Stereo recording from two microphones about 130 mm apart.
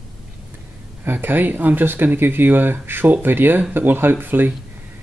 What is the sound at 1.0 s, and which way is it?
Speech, 15° right (ahead or behind).